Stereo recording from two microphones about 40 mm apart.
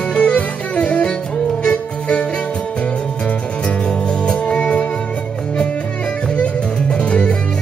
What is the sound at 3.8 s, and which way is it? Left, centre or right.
Music, left.